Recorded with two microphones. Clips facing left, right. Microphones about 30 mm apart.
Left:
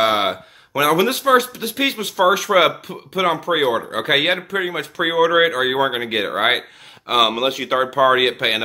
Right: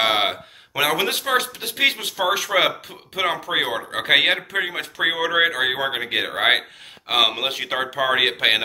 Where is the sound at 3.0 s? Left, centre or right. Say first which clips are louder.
Left 5 dB; centre.